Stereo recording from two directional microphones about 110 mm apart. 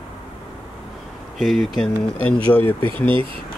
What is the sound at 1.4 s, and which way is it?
Speech, centre (ahead or behind).